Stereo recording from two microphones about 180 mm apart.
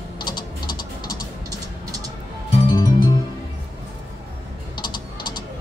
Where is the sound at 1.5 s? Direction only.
20° right (ahead or behind).